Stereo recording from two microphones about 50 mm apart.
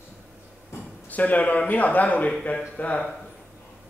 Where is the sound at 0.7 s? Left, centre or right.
Left.